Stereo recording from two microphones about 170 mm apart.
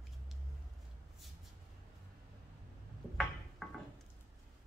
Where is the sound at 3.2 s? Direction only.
Centre (ahead or behind).